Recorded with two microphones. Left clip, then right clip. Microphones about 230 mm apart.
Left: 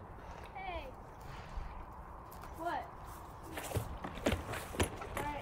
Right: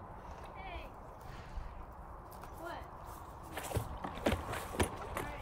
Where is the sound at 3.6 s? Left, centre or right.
Right.